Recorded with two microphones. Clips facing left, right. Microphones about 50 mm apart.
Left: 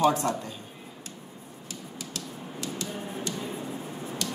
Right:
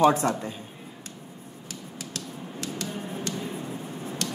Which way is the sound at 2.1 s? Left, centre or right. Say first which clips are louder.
Right 2 dB; right.